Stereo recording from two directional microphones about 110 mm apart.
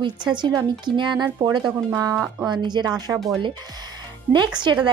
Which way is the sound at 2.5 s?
40° right (ahead or behind).